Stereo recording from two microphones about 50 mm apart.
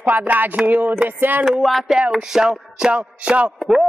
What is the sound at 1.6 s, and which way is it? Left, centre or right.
Speech, centre.